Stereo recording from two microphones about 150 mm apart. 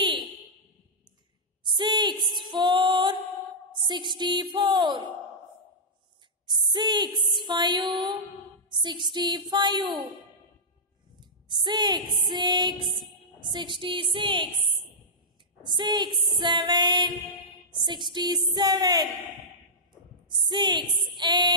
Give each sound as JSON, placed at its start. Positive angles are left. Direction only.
{"t": 1.7, "sound": "a sound", "side_deg": -30}
{"t": 2.3, "sound": "music", "side_deg": -30}
{"t": 6.4, "sound": "a sound", "side_deg": -30}
{"t": 7.3, "sound": "music", "side_deg": -30}
{"t": 8.6, "sound": "female singing", "side_deg": -30}
{"t": 11.1, "sound": "a sound", "side_deg": -30}
{"t": 12.2, "sound": "music", "side_deg": -30}
{"t": 12.7, "sound": "a sound", "side_deg": 30}
{"t": 13.0, "sound": "a woman's voice", "side_deg": -30}
{"t": 15.8, "sound": "female singing", "side_deg": -30}
{"t": 20.2, "sound": "a woman's voice", "side_deg": -30}
{"t": 21.2, "sound": "female singing", "side_deg": -30}